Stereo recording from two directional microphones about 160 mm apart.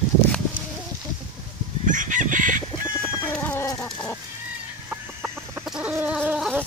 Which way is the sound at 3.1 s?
10° left (ahead or behind).